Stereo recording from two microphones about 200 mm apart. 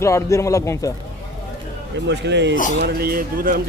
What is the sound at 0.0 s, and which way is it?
Speech, 15° left (ahead or behind).